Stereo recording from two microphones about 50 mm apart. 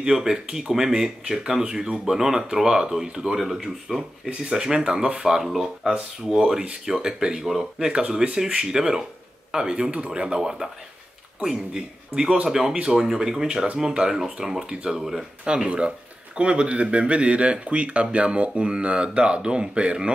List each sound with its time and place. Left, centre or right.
0.0 s speech: centre
15.4 s speech: centre